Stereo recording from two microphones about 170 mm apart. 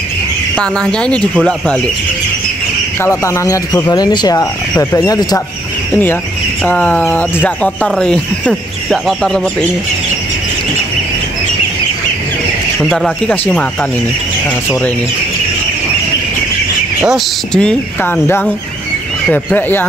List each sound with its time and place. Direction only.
0.6 s speech: 5° left (ahead or behind)
3.0 s speech: 15° left (ahead or behind)
6.6 s speech: 10° left (ahead or behind)
12.8 s speech: centre (ahead or behind)
17.1 s speech: 5° left (ahead or behind)